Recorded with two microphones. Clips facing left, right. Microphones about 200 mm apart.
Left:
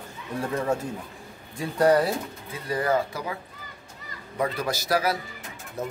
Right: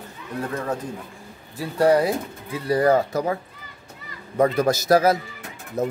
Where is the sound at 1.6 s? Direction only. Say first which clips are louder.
Right 2 dB; 10° right (ahead or behind).